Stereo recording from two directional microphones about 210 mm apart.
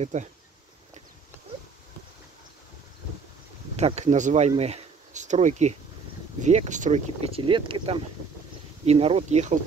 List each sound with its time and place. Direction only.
0.0 s speech: 35° right (ahead or behind)
3.7 s speech: 30° right (ahead or behind)